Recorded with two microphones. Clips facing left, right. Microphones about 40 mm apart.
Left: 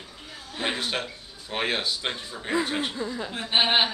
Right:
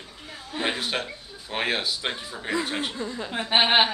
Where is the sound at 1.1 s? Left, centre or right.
Centre.